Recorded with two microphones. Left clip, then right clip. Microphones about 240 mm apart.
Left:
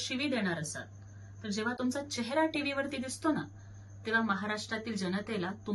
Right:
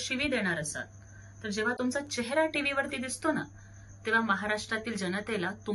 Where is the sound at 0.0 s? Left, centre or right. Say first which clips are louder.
Right 3 dB; centre.